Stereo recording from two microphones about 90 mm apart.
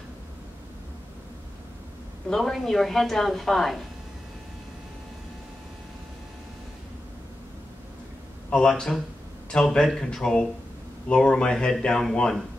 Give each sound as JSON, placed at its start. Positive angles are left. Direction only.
{"t": 2.2, "sound": "a woman's voice", "side_deg": 5}
{"t": 8.5, "sound": "speech", "side_deg": 10}